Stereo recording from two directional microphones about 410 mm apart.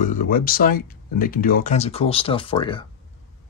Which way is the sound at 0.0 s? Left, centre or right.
Centre.